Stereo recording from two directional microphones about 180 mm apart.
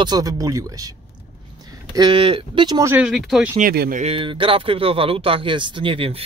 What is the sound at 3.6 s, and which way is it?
Speech, 55° right (ahead or behind).